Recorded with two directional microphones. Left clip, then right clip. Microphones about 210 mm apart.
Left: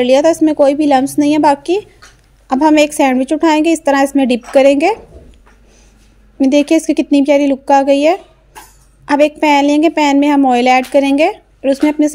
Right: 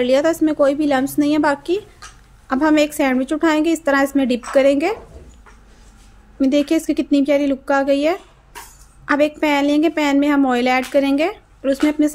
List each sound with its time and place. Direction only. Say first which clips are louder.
0.0 s a woman's voice: left 6 dB; 15° left (ahead or behind)
6.4 s a woman's voice: left 6 dB; 15° left (ahead or behind)